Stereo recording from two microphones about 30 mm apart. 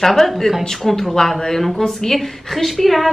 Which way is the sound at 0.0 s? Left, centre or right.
Centre.